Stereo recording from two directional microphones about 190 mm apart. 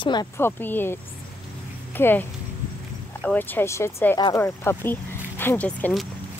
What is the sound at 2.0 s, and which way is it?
Speech, 10° left (ahead or behind).